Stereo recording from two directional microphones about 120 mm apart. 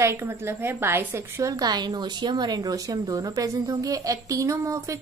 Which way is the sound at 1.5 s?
35° right (ahead or behind).